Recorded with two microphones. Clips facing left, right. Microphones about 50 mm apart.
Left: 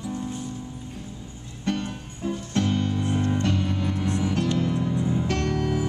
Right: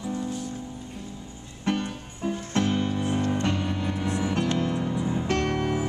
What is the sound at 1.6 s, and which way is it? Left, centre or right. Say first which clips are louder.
Music: right 1 dB; centre.